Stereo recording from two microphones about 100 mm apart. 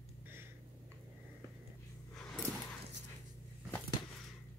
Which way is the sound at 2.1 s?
5° left (ahead or behind).